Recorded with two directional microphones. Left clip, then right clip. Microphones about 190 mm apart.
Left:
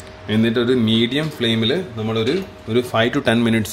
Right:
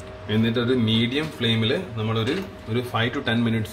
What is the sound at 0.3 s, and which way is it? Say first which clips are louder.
Speech: left 5 dB; 55° left (ahead or behind).